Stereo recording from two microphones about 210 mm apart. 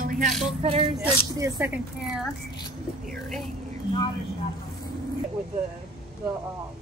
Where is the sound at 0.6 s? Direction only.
25° right (ahead or behind); by 2.3 s 10° right (ahead or behind).